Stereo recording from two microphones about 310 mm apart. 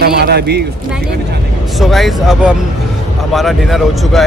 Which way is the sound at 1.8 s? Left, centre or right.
Centre.